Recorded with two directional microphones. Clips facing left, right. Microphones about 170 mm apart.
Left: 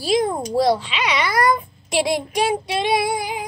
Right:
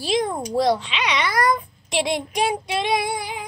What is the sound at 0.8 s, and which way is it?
A child's voice, 5° left (ahead or behind).